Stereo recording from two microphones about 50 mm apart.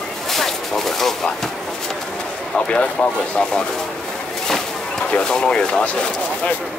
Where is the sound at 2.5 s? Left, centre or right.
Centre.